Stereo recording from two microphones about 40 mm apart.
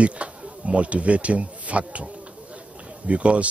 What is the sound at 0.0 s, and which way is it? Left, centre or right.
Speech, right.